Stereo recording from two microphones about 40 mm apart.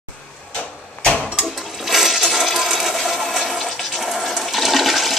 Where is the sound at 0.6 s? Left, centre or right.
Left.